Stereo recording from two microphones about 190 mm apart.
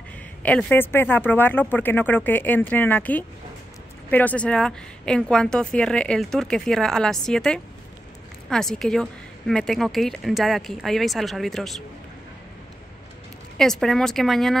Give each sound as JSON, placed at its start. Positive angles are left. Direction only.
{"t": 0.4, "sound": "a woman's voice", "side_deg": 5}
{"t": 13.6, "sound": "a woman's voice", "side_deg": 0}